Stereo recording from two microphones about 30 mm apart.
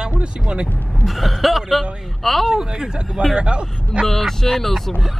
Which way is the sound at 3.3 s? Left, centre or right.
Right.